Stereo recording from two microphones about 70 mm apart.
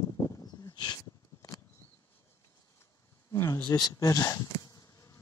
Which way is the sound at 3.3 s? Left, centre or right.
Left.